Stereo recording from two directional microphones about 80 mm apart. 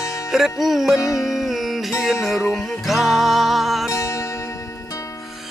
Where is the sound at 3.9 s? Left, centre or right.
Left.